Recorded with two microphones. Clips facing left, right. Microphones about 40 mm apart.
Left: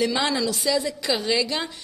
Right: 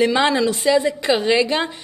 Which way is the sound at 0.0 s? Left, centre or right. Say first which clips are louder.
Right 6 dB; right.